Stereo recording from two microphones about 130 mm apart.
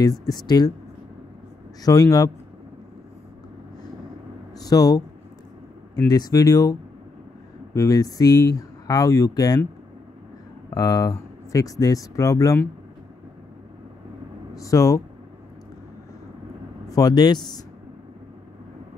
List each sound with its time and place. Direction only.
0.0 s speech: 30° left (ahead or behind)
1.8 s speech: 30° left (ahead or behind)
4.6 s speech: 30° left (ahead or behind)
6.0 s speech: 30° left (ahead or behind)
10.7 s speech: 30° left (ahead or behind)
14.5 s speech: 25° left (ahead or behind)
16.9 s speech: 30° left (ahead or behind)